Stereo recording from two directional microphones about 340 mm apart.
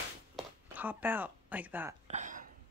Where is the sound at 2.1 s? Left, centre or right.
Right.